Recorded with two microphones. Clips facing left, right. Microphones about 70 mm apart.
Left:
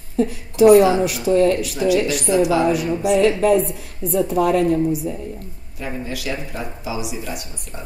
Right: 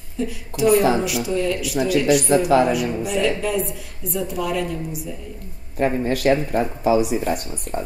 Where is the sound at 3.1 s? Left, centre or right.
Left.